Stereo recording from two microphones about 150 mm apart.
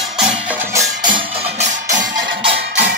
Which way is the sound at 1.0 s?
35° right (ahead or behind).